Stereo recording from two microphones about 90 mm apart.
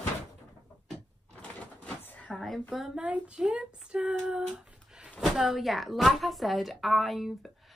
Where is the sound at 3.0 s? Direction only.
15° right (ahead or behind).